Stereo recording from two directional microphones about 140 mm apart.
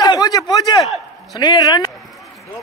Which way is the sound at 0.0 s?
25° left (ahead or behind).